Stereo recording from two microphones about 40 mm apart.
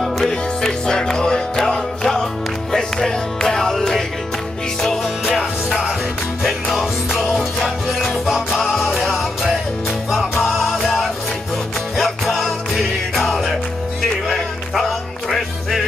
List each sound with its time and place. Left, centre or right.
0.3 s music: centre
2.7 s music: centre
5.2 s music: centre
8.7 s music: centre
10.5 s music: centre
12.0 s music: centre
14.7 s music: centre